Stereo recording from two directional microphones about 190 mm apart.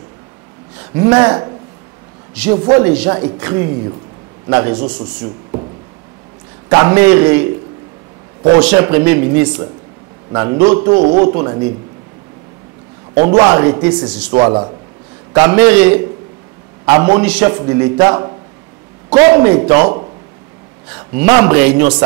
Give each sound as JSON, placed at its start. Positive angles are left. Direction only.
{"t": 0.9, "sound": "a man's voice", "side_deg": -20}
{"t": 2.7, "sound": "speech", "side_deg": -10}
{"t": 6.7, "sound": "speech", "side_deg": -15}
{"t": 8.5, "sound": "a man's voice", "side_deg": -10}
{"t": 13.1, "sound": "a man's voice", "side_deg": -20}
{"t": 15.3, "sound": "a man's voice", "side_deg": -15}
{"t": 21.2, "sound": "speech", "side_deg": -15}